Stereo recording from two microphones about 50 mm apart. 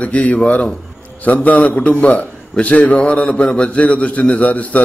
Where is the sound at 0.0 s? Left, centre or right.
Left.